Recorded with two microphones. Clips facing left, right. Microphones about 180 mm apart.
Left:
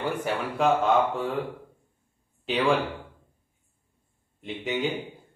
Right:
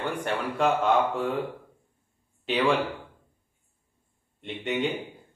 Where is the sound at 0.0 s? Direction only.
5° left (ahead or behind).